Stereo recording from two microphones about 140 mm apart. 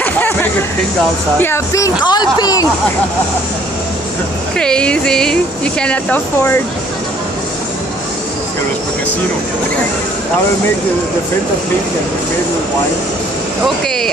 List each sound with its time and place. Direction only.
0.0 s a sound: 15° left (ahead or behind)
1.4 s speech: 20° left (ahead or behind)
4.6 s speech: 5° left (ahead or behind)